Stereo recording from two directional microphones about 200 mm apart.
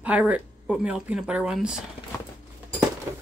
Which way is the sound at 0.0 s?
5° right (ahead or behind).